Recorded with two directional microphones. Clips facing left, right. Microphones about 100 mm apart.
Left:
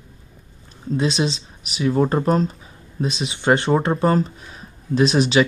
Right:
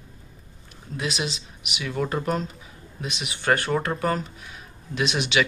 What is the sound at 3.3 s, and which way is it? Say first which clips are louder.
Speech: left 5 dB; 20° left (ahead or behind).